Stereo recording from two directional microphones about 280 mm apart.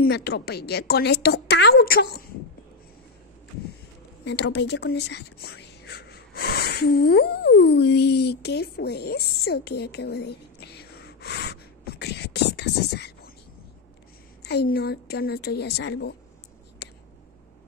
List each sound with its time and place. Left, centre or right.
0.0 s a woman's voice: left
4.2 s speech: left
14.4 s a woman's voice: left
16.8 s whispering: left